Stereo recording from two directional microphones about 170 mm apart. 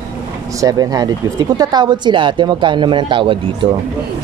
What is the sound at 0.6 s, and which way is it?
Speech, 20° right (ahead or behind).